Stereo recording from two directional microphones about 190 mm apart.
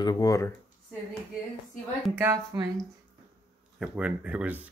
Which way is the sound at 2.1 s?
15° right (ahead or behind).